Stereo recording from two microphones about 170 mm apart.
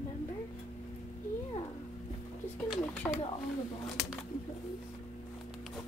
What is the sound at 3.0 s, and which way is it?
Speech, 10° left (ahead or behind).